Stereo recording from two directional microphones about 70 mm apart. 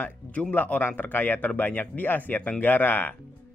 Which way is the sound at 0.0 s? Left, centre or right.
Left.